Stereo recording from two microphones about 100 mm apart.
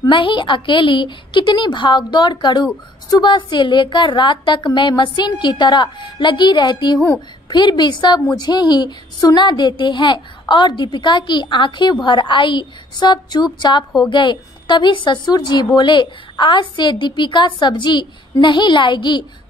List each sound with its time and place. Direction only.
0.1 s a woman's voice: 55° left (ahead or behind)